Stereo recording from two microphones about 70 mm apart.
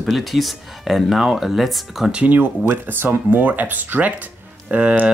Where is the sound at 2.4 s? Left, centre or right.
Right.